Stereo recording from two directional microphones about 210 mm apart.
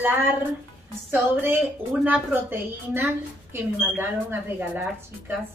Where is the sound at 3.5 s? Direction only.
10° right (ahead or behind).